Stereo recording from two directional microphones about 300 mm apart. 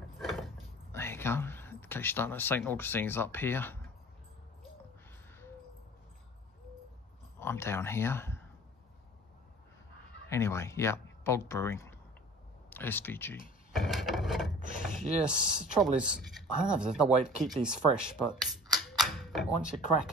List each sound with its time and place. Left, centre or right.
0.2 s a sound: centre
0.9 s speech: centre
7.3 s speech: centre
10.3 s speech: centre
13.7 s wood: centre
14.6 s a sound: right
15.0 s speech: centre